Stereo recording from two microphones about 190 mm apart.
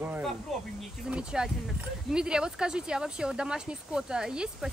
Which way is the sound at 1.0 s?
5° right (ahead or behind).